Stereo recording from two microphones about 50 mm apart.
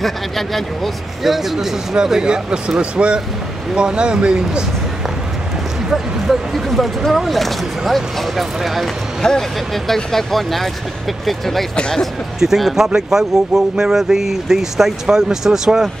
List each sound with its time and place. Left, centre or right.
0.0 s speech: centre
5.9 s speech: centre
9.2 s speech: centre